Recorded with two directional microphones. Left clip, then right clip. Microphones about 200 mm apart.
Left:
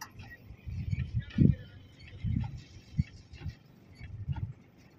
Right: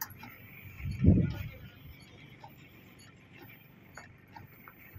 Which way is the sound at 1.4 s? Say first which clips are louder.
Left 16 dB; 25° left (ahead or behind).